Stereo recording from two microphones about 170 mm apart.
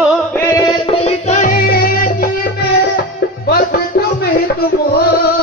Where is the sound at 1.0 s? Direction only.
40° left (ahead or behind).